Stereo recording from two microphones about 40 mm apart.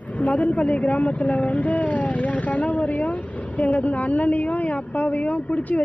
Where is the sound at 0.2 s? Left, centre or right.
Left.